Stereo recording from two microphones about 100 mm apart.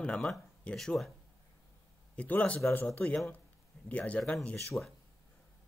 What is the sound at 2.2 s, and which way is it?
Speech, 15° left (ahead or behind).